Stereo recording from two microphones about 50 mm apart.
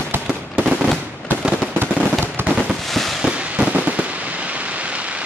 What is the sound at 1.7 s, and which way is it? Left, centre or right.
Fireworks, right.